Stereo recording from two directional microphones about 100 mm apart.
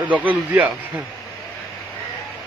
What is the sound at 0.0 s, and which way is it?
Speech, 15° right (ahead or behind).